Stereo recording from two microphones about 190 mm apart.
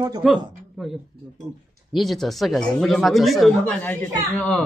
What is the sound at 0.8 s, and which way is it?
Speech, centre (ahead or behind).